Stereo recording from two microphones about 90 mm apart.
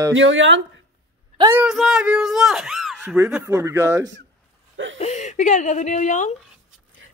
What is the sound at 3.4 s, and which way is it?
Speech, 30° right (ahead or behind).